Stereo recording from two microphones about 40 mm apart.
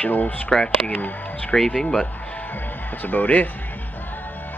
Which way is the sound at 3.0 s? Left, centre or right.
Left.